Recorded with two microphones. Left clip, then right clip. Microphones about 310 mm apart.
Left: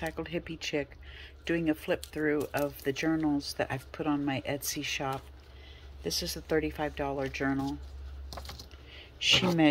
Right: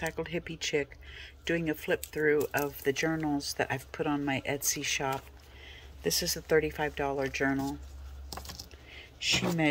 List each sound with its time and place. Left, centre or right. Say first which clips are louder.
0.0 s speech: right 1 dB; centre
8.3 s typing: right 1 dB; centre